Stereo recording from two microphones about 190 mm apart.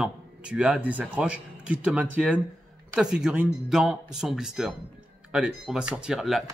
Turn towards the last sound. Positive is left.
turn(degrees=0)  # may be behind; listen again after turning